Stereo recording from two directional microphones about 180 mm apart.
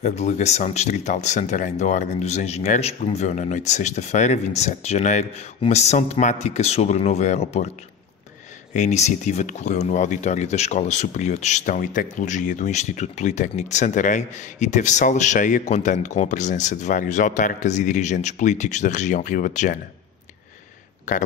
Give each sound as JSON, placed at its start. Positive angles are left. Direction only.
{"t": 0.0, "sound": "speech", "side_deg": 40}
{"t": 8.7, "sound": "speech", "side_deg": 40}
{"t": 21.1, "sound": "speech", "side_deg": 45}